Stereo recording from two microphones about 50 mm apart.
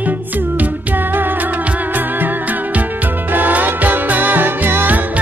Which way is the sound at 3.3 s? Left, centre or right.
Right.